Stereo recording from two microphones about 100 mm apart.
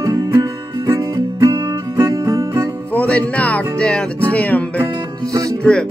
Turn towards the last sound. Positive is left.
turn(degrees=10)  # may be behind; listen again after turning